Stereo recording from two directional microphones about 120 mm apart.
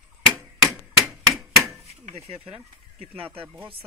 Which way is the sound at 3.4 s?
15° right (ahead or behind).